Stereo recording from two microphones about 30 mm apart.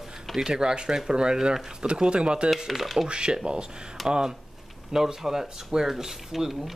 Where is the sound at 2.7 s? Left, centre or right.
Centre.